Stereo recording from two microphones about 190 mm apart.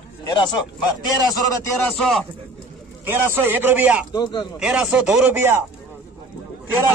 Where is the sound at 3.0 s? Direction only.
10° right (ahead or behind).